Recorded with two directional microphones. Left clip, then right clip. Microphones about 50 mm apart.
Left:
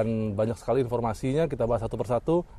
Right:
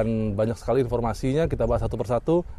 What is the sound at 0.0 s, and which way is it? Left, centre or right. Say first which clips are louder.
A man's voice: right 2 dB; centre.